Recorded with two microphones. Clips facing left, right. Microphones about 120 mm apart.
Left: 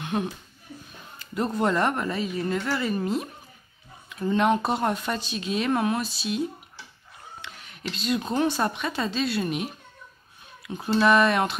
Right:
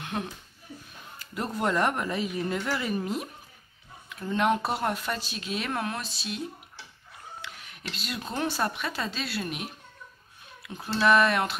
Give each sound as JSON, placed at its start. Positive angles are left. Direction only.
{"t": 0.0, "sound": "a sound", "side_deg": 5}
{"t": 1.3, "sound": "speech", "side_deg": -5}
{"t": 4.1, "sound": "a woman's voice", "side_deg": 0}
{"t": 7.4, "sound": "a woman's voice", "side_deg": -5}
{"t": 10.7, "sound": "a woman's voice", "side_deg": 0}